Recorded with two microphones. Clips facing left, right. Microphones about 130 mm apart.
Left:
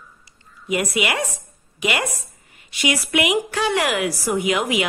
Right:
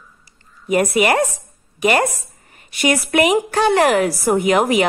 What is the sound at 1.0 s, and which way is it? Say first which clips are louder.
Speech: right 8 dB; 50° right (ahead or behind).